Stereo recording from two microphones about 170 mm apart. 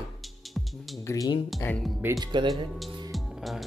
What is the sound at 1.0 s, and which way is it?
Speech, 20° left (ahead or behind).